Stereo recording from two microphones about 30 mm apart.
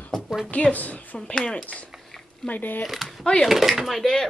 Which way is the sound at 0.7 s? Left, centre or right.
Left.